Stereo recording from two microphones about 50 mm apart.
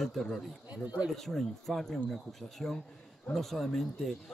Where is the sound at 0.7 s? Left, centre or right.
Right.